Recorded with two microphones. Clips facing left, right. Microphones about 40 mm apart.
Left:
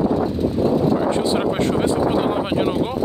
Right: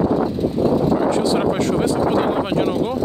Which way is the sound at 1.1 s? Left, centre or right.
Left.